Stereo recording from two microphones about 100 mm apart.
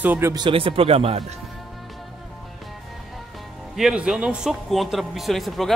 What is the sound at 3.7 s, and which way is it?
Speech, 5° right (ahead or behind).